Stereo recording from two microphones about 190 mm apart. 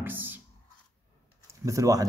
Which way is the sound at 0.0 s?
10° right (ahead or behind).